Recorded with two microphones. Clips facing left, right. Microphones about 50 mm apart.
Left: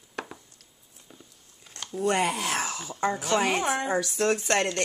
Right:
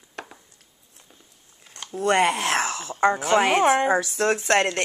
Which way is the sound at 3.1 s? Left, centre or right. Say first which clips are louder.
Right 3 dB; right.